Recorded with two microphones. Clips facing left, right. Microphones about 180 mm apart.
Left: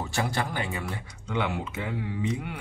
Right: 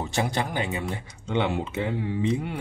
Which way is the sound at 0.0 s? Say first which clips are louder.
Right 2 dB; 20° right (ahead or behind).